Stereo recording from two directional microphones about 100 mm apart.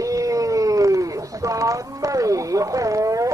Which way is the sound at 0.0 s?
35° right (ahead or behind).